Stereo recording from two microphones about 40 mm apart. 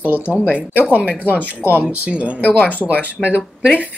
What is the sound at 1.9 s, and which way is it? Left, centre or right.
Speech, right.